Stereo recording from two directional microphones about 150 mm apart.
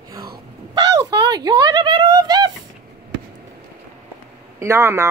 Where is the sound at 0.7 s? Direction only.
25° right (ahead or behind).